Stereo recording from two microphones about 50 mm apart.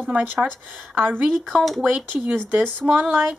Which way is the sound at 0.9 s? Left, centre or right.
Right.